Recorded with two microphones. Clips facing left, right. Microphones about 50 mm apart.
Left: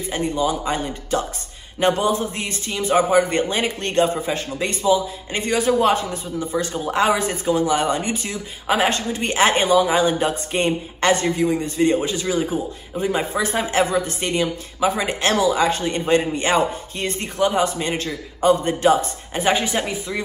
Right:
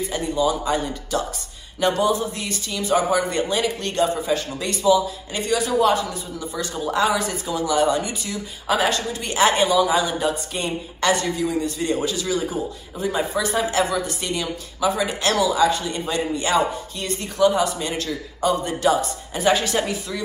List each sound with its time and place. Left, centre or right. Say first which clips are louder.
0.0 s a man's voice: even; left
19.5 s speech: even; left